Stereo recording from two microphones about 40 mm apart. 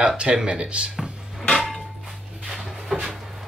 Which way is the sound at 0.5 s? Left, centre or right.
Right.